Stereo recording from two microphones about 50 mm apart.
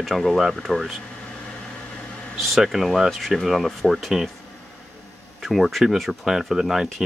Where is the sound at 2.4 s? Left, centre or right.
Centre.